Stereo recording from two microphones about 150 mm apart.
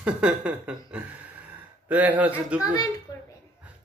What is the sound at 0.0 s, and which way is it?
A man's voice, 10° right (ahead or behind).